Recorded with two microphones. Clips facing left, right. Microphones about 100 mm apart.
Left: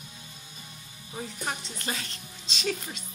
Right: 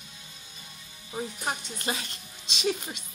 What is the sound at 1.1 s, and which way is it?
Speech, 20° right (ahead or behind).